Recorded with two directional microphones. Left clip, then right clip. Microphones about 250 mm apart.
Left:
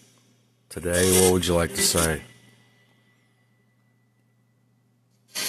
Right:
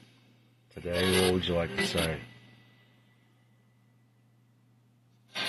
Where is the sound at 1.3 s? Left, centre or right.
Left.